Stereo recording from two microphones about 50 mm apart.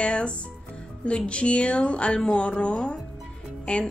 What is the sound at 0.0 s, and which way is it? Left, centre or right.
Speech, left.